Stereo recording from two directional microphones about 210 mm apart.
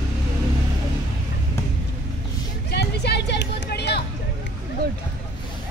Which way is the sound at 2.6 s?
50° left (ahead or behind).